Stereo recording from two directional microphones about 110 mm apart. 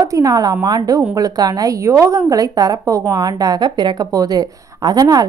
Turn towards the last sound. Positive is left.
turn(degrees=-35)  # may be behind; listen again after turning